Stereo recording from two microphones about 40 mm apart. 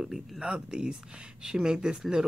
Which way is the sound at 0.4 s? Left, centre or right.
Right.